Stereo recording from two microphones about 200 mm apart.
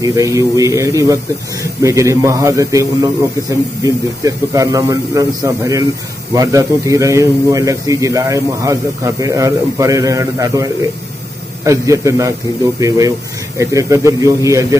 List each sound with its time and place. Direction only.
0.0 s speech: 15° right (ahead or behind)